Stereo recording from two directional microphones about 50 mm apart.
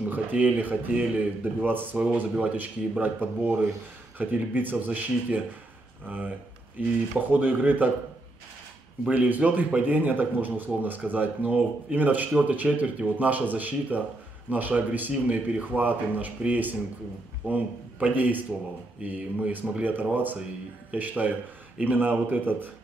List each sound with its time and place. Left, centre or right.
0.0 s speech: right
9.1 s a man's voice: right